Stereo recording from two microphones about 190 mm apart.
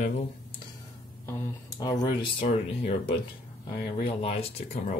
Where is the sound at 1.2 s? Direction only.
20° left (ahead or behind).